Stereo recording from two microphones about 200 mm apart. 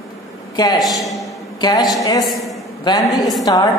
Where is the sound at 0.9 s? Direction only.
Centre (ahead or behind).